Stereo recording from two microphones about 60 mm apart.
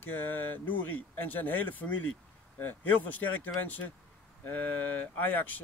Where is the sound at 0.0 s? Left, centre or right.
Left.